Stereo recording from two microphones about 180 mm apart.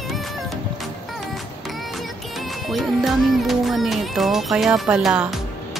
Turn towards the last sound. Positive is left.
turn(degrees=-5)  # may be behind; listen again after turning